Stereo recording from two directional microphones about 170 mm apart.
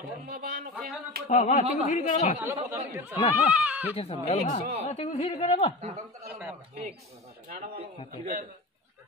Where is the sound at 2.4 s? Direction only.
15° right (ahead or behind).